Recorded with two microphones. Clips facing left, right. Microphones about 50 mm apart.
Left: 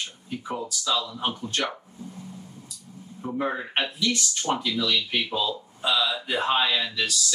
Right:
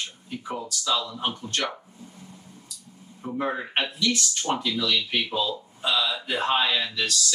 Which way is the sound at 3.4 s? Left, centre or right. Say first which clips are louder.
Even; centre.